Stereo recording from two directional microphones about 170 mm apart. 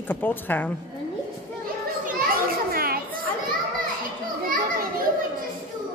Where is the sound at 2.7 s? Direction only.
60° right (ahead or behind).